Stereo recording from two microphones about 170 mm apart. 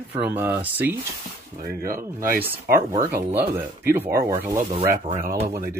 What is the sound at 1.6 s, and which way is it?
Speech, 55° right (ahead or behind).